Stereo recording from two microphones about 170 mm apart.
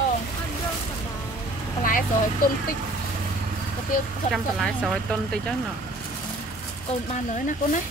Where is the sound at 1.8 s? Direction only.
55° left (ahead or behind).